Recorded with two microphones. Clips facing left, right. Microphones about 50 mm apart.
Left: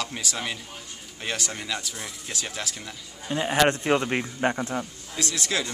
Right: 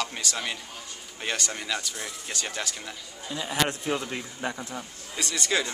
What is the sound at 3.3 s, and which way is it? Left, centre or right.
Speech, left.